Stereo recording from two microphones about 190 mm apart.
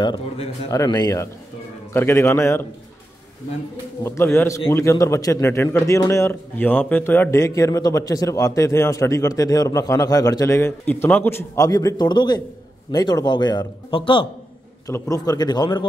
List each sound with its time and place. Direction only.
0.0 s a man's voice: 25° left (ahead or behind)
4.0 s a man's voice: 15° left (ahead or behind)